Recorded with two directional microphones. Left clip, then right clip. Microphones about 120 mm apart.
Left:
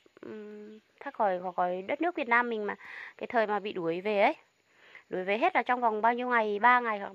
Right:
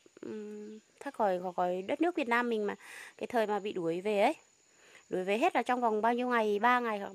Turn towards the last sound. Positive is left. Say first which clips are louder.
# left 4 dB
turn(degrees=-45)  # may be behind; listen again after turning